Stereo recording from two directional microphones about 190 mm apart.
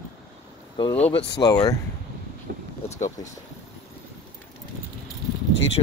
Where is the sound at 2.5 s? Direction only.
55° right (ahead or behind).